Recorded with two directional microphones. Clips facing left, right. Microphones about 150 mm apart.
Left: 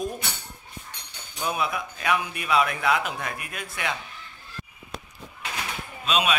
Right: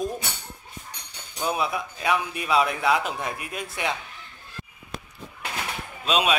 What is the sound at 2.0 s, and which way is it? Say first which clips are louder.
Speech: right 1 dB; centre (ahead or behind).